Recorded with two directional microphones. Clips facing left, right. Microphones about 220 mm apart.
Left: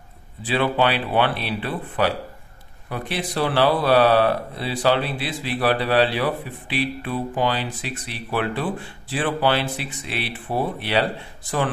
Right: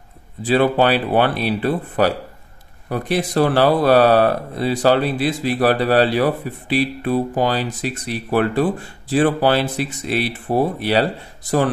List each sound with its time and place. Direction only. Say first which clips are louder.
0.4 s speech: right 5 dB; 40° right (ahead or behind)